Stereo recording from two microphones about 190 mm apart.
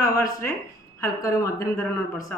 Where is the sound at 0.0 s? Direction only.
15° left (ahead or behind).